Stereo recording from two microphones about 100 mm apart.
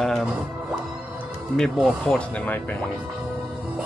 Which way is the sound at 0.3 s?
10° right (ahead or behind).